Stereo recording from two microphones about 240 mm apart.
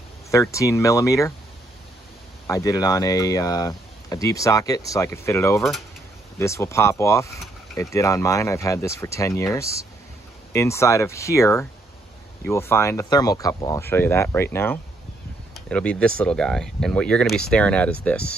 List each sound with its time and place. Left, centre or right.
0.3 s speech: centre
2.4 s speech: centre